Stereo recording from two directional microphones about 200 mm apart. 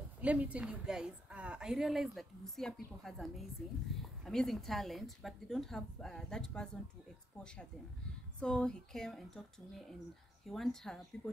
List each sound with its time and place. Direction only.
0.2 s a woman's voice: 5° right (ahead or behind)